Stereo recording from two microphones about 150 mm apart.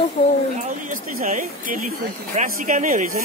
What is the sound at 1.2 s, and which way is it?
Speech, 60° right (ahead or behind).